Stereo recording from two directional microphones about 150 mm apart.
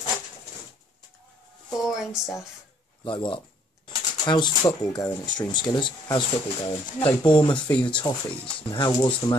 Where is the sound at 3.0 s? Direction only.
35° left (ahead or behind).